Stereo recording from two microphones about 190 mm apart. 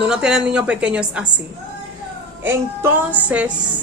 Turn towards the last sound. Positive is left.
turn(degrees=-5)  # may be behind; listen again after turning